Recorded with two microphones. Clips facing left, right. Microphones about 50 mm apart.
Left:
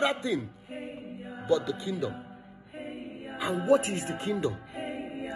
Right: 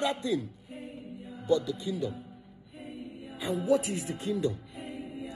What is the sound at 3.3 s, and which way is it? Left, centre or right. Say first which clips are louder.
Speech: left 3 dB; left.